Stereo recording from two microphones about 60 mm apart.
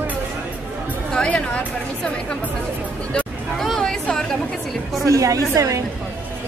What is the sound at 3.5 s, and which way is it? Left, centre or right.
Chatter, centre.